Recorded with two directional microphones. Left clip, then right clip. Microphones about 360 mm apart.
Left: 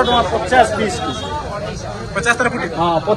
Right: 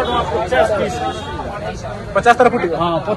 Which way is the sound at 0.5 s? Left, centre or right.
Left.